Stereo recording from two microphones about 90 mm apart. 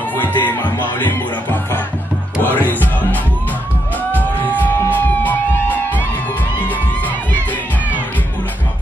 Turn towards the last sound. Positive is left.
turn(degrees=20)  # may be behind; listen again after turning